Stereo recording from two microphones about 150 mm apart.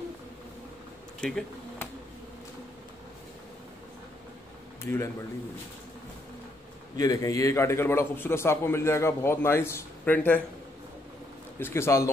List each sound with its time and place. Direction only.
1.2 s speech: 5° left (ahead or behind)
4.8 s a man's voice: 15° left (ahead or behind)
7.0 s a man's voice: 25° left (ahead or behind)
11.6 s a man's voice: 15° left (ahead or behind)